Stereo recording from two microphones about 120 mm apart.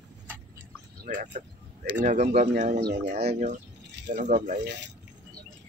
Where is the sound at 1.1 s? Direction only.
90° right.